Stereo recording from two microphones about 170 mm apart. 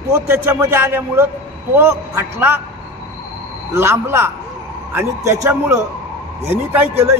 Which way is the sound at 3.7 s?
15° right (ahead or behind).